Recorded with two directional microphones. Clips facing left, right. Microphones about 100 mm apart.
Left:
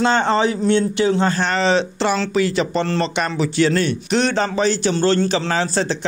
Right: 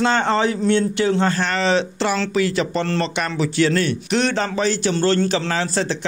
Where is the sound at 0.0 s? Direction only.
20° left (ahead or behind).